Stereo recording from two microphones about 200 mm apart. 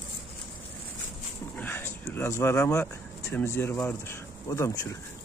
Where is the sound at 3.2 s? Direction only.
10° left (ahead or behind).